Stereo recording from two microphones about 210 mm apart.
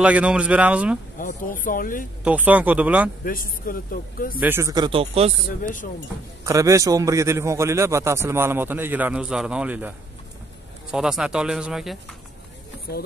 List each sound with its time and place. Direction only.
0.0 s speech: 5° right (ahead or behind)
1.1 s speech: 40° left (ahead or behind)
2.2 s a man's voice: 5° right (ahead or behind)
3.3 s a man's voice: 40° left (ahead or behind)
4.4 s speech: 10° right (ahead or behind); by 5.3 s 25° right (ahead or behind)
5.6 s speech: 40° left (ahead or behind)
6.4 s a man's voice: 15° right (ahead or behind)